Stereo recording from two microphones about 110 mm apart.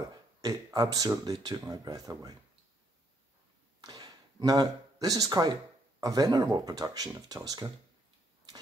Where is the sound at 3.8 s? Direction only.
35° right (ahead or behind).